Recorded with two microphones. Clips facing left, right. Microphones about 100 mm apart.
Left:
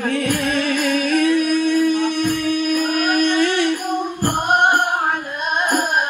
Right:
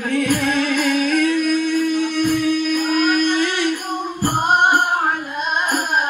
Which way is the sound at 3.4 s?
45° left (ahead or behind).